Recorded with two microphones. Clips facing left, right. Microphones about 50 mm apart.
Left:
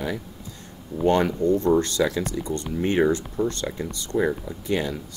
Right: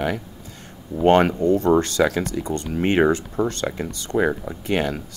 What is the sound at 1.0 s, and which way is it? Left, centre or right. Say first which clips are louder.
Speech: right 4 dB; right.